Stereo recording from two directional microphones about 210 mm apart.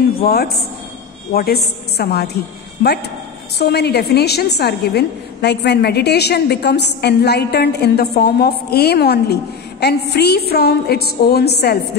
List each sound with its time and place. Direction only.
0.2 s a woman's voice: 45° left (ahead or behind)
3.5 s a woman's voice: 50° left (ahead or behind)